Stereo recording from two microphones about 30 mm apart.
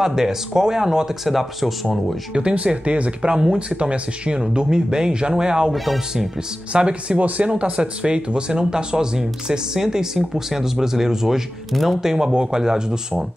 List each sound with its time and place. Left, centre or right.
0.0 s speech: centre
2.3 s speech: right
6.7 s speech: right
7.2 s speech: right
7.5 s speech: right; by 11.4 s centre
11.7 s speech: centre
12.0 s speech: centre